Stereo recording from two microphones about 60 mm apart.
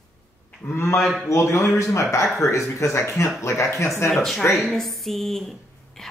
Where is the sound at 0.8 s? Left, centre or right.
Left.